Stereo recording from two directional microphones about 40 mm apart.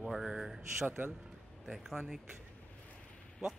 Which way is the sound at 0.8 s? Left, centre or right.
Right.